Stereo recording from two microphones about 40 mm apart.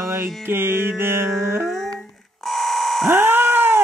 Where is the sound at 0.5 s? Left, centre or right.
Right.